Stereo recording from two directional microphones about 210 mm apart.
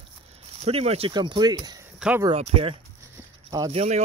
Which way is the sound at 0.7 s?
30° right (ahead or behind).